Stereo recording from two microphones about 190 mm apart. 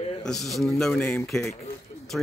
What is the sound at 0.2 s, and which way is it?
A man's voice, centre (ahead or behind).